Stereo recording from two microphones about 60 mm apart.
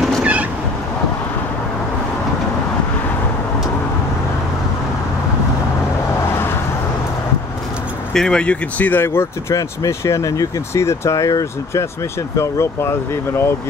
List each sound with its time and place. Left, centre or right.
0.2 s cat: right
8.1 s speech: centre; by 9.0 s left
9.0 s speech: left
9.5 s speech: left
10.7 s speech: left
12.4 s speech: left